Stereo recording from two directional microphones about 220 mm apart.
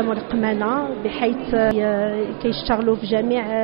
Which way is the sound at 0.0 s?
20° right (ahead or behind).